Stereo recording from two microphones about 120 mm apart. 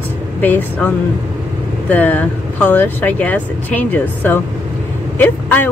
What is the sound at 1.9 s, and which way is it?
Speech, 15° left (ahead or behind).